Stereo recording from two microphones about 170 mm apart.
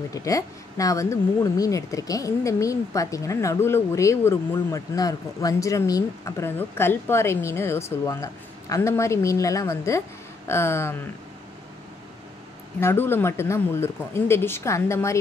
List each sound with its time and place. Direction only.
0.1 s speech: 20° left (ahead or behind)
12.8 s speech: 15° left (ahead or behind)